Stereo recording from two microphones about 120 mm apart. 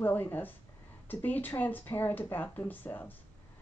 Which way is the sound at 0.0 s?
15° left (ahead or behind).